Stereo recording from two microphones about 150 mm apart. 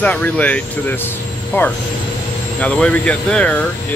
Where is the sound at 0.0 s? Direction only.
10° left (ahead or behind).